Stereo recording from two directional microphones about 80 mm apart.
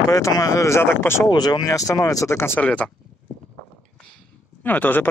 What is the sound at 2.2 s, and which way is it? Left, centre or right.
Speech, left.